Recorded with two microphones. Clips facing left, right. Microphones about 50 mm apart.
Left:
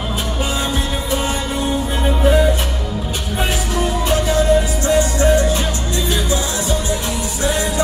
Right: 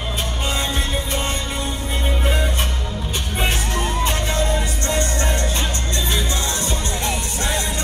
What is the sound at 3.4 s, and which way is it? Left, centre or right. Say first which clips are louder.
Music: left 3 dB; right.